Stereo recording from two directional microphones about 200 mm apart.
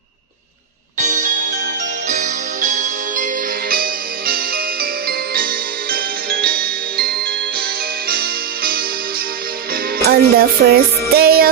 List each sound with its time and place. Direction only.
0.9 s music: 35° right (ahead or behind)
9.9 s music: 50° right (ahead or behind)